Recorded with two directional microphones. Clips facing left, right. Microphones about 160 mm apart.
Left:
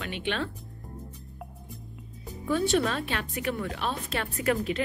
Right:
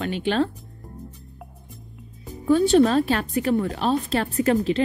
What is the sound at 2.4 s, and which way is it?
A woman's voice, 35° right (ahead or behind).